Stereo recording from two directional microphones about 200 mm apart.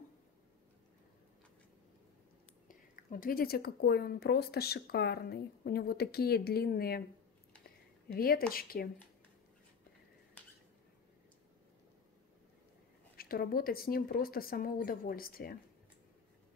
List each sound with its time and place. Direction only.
2.7 s speech: 45° left (ahead or behind)
8.1 s speech: 50° left (ahead or behind)
13.1 s speech: 50° left (ahead or behind)